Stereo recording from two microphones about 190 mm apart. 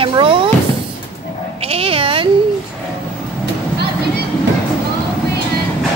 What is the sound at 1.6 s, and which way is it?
Speech, 30° right (ahead or behind).